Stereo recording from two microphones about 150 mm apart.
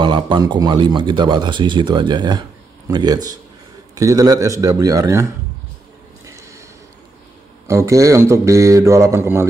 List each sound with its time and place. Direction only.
0.0 s a man's voice: 30° right (ahead or behind)
6.2 s a sound: 20° right (ahead or behind)
7.6 s a man's voice: 20° right (ahead or behind)